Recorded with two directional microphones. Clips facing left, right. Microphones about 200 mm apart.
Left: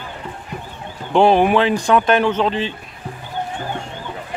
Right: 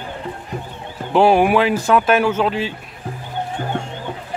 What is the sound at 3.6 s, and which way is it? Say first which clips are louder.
Music: right 2 dB; 55° right (ahead or behind).